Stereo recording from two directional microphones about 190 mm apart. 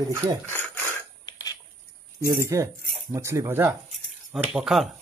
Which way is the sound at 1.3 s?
20° left (ahead or behind).